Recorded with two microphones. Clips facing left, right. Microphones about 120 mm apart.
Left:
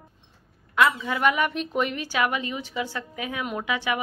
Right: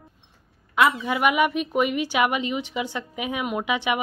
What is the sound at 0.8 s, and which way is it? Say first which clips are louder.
Speech: right 1 dB; 15° right (ahead or behind).